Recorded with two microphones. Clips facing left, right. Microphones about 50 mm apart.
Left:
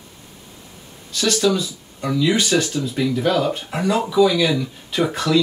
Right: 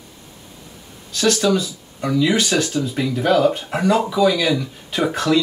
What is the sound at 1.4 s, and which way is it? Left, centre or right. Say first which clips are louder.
Speech: right 1 dB; centre.